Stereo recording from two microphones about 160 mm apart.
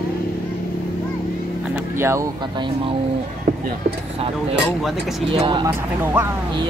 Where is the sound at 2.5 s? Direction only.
30° right (ahead or behind).